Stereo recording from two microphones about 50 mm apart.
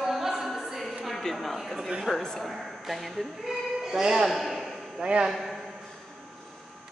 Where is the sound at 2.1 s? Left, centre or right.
Centre.